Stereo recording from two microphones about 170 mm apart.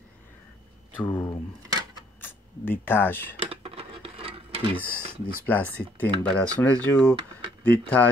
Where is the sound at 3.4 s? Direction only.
35° right (ahead or behind).